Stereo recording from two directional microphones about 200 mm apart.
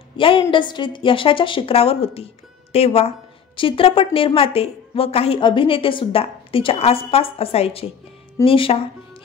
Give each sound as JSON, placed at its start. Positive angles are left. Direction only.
{"t": 0.2, "sound": "a woman's voice", "side_deg": 25}